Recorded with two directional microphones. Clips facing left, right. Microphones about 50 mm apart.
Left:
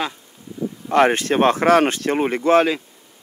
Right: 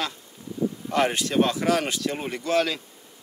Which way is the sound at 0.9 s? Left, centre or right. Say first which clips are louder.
Left 9 dB; left.